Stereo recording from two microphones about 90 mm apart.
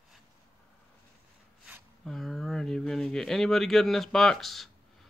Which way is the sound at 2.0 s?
5° left (ahead or behind).